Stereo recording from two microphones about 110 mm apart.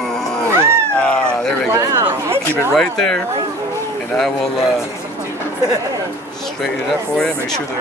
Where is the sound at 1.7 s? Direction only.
30° right (ahead or behind).